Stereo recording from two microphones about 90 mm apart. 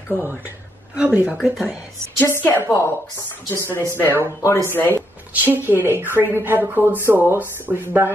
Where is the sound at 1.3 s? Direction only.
5° right (ahead or behind).